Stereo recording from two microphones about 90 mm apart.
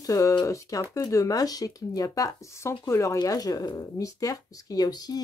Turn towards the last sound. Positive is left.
turn(degrees=50)  # may be behind; listen again after turning